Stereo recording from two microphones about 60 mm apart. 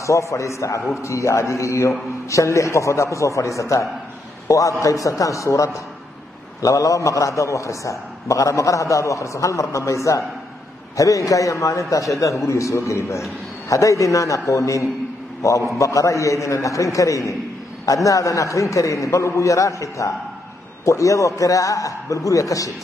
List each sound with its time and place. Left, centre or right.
0.0 s a man's voice: left